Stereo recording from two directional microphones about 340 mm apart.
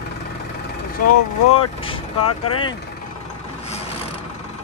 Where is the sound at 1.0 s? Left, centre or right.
Left.